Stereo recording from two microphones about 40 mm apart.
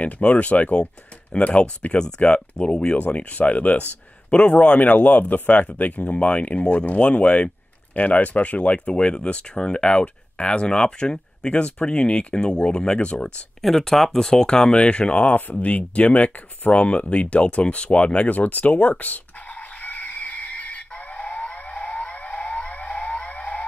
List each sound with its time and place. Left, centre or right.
0.0 s speech: left
2.0 s speech: left
3.0 s speech: left
4.3 s speech: left
4.7 s speech: left
6.6 s speech: left
13.6 s speech: centre; by 18.4 s left
18.4 s music: left